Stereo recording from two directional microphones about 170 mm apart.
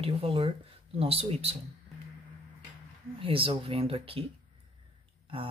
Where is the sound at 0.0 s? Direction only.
35° right (ahead or behind).